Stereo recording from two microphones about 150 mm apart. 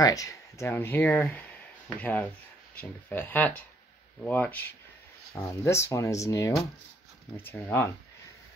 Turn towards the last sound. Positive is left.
turn(degrees=15)  # may be behind; listen again after turning